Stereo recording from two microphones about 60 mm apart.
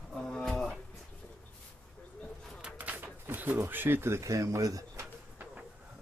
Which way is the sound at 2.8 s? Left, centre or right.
Right.